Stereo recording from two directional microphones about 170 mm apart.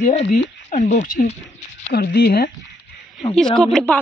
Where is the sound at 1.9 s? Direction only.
65° left (ahead or behind).